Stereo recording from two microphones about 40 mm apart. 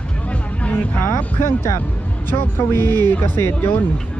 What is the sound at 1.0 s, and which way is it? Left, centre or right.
Music, left.